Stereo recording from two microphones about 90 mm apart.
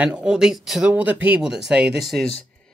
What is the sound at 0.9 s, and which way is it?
Speech, 20° right (ahead or behind).